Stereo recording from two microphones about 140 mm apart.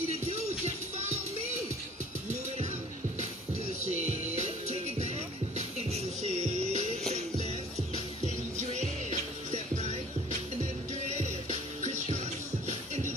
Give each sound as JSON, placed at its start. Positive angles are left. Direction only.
{"t": 0.3, "sound": "music", "side_deg": -50}
{"t": 3.8, "sound": "music", "side_deg": -55}